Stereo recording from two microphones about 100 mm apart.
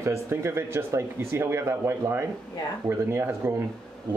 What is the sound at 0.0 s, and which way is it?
Speech, 30° right (ahead or behind).